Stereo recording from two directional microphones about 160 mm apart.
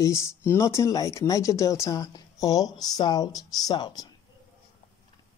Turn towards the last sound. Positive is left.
turn(degrees=25)  # may be behind; listen again after turning